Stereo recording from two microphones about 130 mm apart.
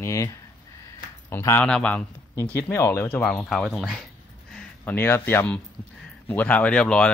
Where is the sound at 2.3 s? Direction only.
20° left (ahead or behind).